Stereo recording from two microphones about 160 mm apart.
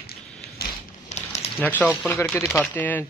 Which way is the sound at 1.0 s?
45° left (ahead or behind).